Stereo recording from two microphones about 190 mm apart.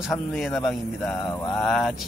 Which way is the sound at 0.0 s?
Centre (ahead or behind).